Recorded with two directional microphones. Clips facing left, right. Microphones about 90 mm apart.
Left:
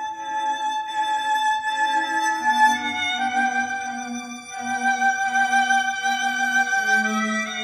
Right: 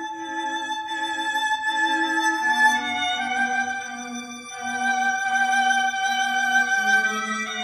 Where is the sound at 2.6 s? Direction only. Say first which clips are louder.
Left 2 dB; 40° right (ahead or behind).